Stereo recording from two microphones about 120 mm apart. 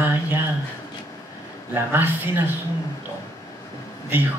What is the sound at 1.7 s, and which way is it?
Speech, 20° right (ahead or behind).